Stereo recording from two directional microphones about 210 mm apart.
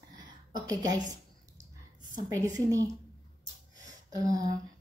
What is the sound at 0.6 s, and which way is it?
Speech, 15° right (ahead or behind).